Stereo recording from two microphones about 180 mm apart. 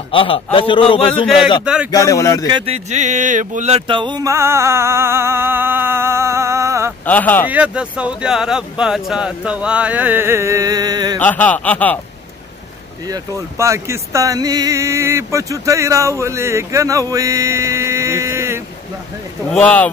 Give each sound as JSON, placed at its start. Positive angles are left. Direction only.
{"t": 0.1, "sound": "a man's voice", "side_deg": 30}
{"t": 1.6, "sound": "speech", "side_deg": -5}
{"t": 1.9, "sound": "speech", "side_deg": 20}
{"t": 2.4, "sound": "speech", "side_deg": -30}
{"t": 7.1, "sound": "speech", "side_deg": 10}
{"t": 7.4, "sound": "speech", "side_deg": -5}
{"t": 11.1, "sound": "speech", "side_deg": 10}
{"t": 13.0, "sound": "speech", "side_deg": -20}
{"t": 19.5, "sound": "speech", "side_deg": 5}